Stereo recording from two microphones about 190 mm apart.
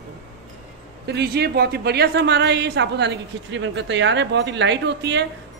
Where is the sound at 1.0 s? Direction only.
60° right (ahead or behind).